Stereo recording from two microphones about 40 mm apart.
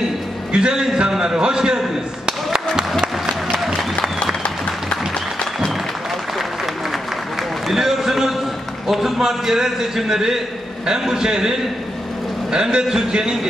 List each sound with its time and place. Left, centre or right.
0.5 s a man's voice: right
2.2 s a sound: centre
3.6 s applause: centre
7.6 s a sound: centre
8.8 s a man's voice: centre
12.5 s a man's voice: centre